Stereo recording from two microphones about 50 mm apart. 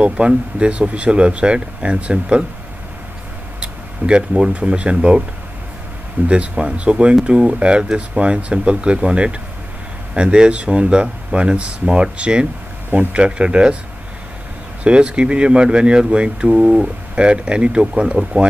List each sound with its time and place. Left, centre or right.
0.2 s speech: right
3.6 s speech: right
6.2 s speech: right
14.8 s speech: right